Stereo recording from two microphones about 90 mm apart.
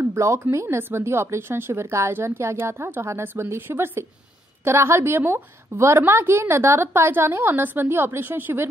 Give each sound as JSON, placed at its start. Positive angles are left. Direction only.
{"t": 0.0, "sound": "speech", "side_deg": -30}